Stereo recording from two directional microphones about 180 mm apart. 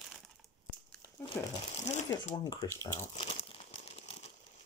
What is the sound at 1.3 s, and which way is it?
Speech, 15° left (ahead or behind).